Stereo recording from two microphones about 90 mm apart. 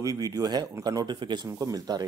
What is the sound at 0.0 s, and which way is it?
Speech, 40° right (ahead or behind).